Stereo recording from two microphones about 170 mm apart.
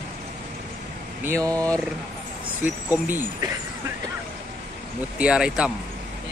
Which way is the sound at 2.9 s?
10° right (ahead or behind).